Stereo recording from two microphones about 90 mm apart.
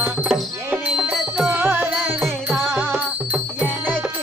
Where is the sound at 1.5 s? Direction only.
20° right (ahead or behind).